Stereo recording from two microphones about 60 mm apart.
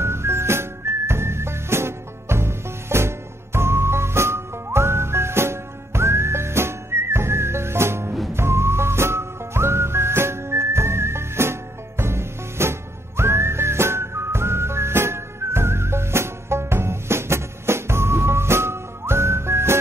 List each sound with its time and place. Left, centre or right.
0.0 s music: right